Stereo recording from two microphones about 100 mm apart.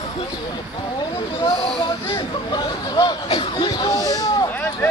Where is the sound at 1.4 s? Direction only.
60° left (ahead or behind).